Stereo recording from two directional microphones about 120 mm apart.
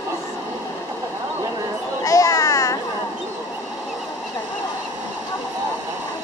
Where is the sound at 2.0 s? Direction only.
25° left (ahead or behind).